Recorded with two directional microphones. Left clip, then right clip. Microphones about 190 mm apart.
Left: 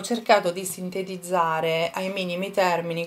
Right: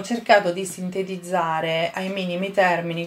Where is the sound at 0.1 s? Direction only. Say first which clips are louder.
Right 3 dB; 25° left (ahead or behind).